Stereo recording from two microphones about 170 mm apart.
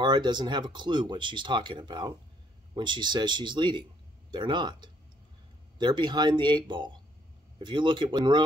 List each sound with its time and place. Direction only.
0.0 s speech: 25° right (ahead or behind)